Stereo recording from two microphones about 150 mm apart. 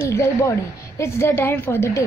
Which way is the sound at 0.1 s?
20° left (ahead or behind).